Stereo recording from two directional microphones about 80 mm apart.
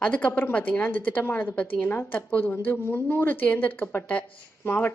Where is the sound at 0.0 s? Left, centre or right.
Centre.